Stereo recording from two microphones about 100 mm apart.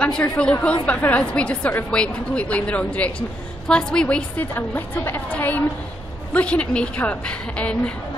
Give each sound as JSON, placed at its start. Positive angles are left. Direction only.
{"t": 0.0, "sound": "a woman's voice", "side_deg": 10}